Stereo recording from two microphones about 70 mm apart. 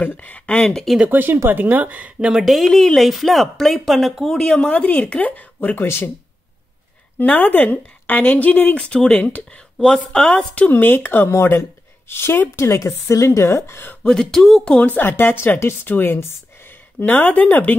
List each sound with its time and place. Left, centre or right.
0.0 s speech: left
1.0 s speech: right
2.4 s a woman's voice: centre
4.6 s speech: centre
7.2 s a woman's voice: left
14.0 s speech: centre
15.0 s speech: left
17.0 s speech: left